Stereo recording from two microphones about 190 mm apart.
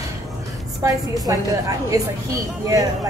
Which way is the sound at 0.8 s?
20° right (ahead or behind).